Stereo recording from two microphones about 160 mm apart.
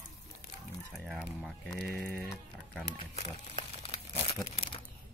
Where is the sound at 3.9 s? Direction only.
25° left (ahead or behind).